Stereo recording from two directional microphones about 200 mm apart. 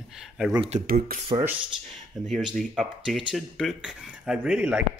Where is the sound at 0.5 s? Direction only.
25° right (ahead or behind).